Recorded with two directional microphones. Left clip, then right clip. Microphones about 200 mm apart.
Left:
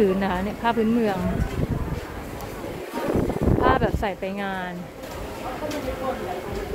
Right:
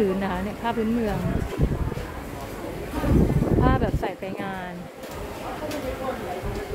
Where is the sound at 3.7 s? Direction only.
10° left (ahead or behind).